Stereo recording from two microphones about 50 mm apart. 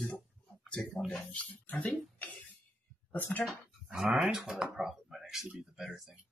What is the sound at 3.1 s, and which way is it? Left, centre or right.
Speech, left.